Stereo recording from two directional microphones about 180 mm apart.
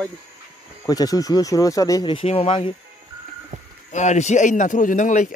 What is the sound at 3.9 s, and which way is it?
A man's voice, 40° left (ahead or behind).